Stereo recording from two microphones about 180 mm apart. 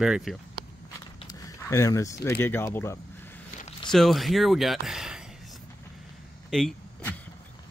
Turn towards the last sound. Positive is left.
turn(degrees=5)  # may be behind; listen again after turning